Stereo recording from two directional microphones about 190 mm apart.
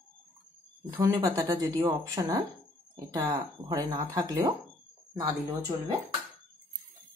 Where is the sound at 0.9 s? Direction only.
20° right (ahead or behind).